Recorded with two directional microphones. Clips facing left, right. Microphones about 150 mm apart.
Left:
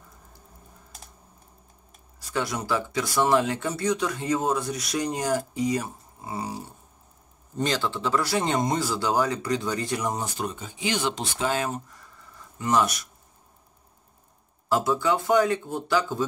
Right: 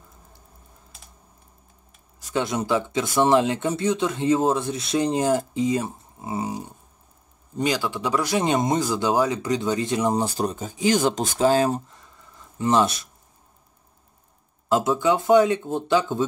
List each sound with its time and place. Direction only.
2.3 s speech: 20° right (ahead or behind)
7.5 s speech: 10° right (ahead or behind); by 13.1 s 25° right (ahead or behind)
14.7 s speech: 20° right (ahead or behind)